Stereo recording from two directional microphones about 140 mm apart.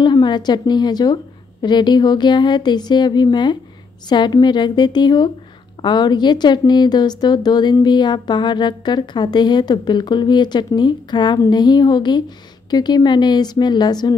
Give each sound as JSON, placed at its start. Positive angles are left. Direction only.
{"t": 0.0, "sound": "a woman's voice", "side_deg": 30}